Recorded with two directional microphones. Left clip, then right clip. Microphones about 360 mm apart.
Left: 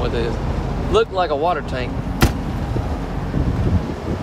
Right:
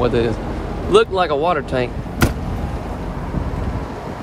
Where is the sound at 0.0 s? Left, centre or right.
Centre.